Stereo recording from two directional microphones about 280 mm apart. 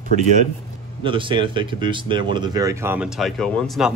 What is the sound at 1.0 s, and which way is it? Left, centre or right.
Speech, centre.